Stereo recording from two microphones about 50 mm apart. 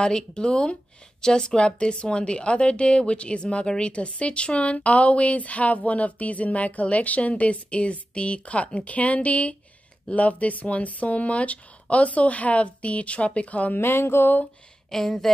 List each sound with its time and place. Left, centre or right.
0.0 s speech: centre
13.7 s a sound: left
14.9 s speech: centre